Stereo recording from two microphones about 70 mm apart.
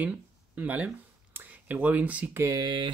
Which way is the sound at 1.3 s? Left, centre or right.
Right.